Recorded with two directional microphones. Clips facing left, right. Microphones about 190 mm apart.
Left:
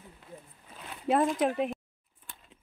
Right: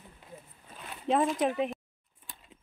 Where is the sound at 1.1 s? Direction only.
Centre (ahead or behind).